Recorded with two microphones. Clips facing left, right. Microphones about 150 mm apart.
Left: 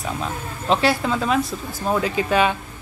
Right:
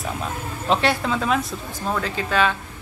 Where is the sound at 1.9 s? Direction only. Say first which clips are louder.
Left 3 dB; 15° left (ahead or behind).